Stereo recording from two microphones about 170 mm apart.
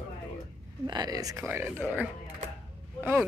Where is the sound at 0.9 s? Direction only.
25° right (ahead or behind).